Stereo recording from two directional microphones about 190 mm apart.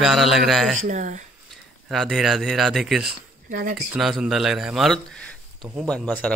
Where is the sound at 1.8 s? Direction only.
Centre (ahead or behind).